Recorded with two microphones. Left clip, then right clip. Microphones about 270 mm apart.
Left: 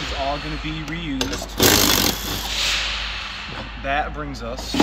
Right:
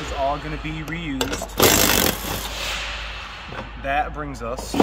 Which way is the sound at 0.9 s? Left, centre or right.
Centre.